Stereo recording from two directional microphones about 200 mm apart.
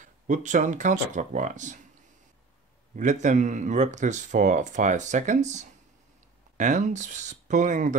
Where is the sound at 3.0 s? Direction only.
35° right (ahead or behind).